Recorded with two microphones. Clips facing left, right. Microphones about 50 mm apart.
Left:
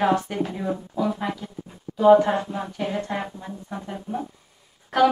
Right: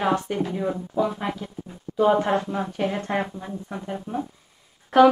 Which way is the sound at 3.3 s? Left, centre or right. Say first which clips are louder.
Right 1 dB; centre.